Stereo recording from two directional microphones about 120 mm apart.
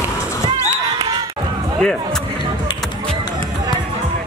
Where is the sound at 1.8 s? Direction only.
5° left (ahead or behind).